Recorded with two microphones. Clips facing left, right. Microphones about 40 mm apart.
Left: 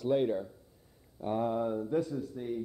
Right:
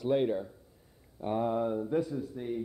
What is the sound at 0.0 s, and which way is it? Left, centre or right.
A man's voice, centre.